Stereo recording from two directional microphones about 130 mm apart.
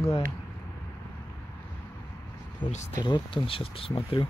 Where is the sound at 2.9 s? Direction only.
35° left (ahead or behind).